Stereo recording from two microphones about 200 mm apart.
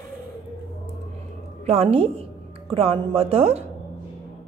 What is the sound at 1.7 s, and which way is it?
Speech, 30° right (ahead or behind).